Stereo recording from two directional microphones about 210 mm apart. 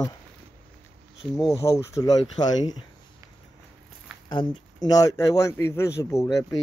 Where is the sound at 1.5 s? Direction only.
15° left (ahead or behind).